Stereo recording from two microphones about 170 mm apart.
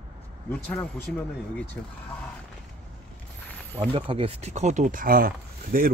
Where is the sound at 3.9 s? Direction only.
30° right (ahead or behind); by 5.9 s 55° right (ahead or behind).